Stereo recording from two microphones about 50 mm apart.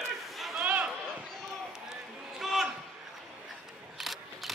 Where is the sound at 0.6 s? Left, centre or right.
Right.